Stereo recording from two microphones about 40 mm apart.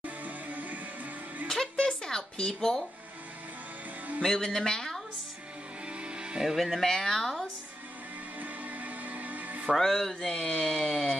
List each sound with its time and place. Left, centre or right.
0.0 s music: right
1.5 s a sound: centre
4.2 s a woman's voice: centre
5.9 s music: right
6.4 s a woman's voice: centre
8.4 s music: right
9.8 s a woman's voice: centre
10.2 s a woman's voice: centre